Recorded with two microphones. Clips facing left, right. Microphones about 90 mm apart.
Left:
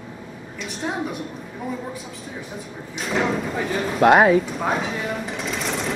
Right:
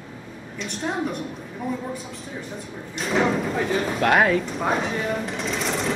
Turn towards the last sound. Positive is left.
turn(degrees=0)  # may be behind; listen again after turning